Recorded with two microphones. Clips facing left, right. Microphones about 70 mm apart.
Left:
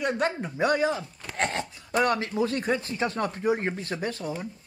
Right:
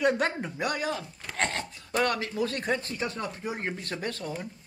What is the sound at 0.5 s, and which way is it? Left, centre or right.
Speech, left.